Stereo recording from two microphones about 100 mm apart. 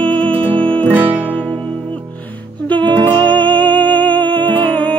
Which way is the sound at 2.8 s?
50° right (ahead or behind).